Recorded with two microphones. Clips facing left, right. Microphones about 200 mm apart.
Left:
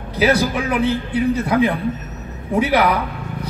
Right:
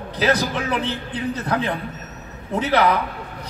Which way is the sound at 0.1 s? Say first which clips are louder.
Left 4 dB; 10° left (ahead or behind).